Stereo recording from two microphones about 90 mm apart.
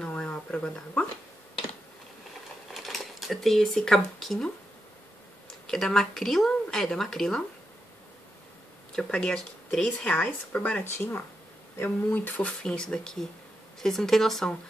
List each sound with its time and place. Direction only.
0.0 s a sound: 10° left (ahead or behind)
2.7 s speech: centre (ahead or behind)
5.7 s speech: 5° left (ahead or behind)
8.9 s speech: 5° left (ahead or behind)